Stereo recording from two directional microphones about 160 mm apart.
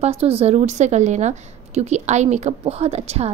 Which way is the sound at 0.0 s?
40° right (ahead or behind).